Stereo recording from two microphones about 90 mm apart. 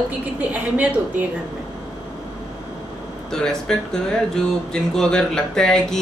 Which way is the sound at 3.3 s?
5° left (ahead or behind).